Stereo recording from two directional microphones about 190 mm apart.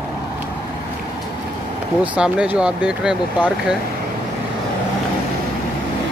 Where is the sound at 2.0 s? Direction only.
5° right (ahead or behind).